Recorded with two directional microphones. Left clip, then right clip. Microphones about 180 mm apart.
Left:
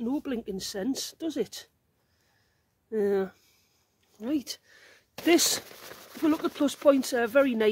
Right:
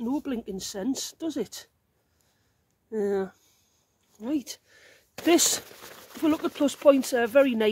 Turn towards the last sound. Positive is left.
turn(degrees=-10)  # may be behind; listen again after turning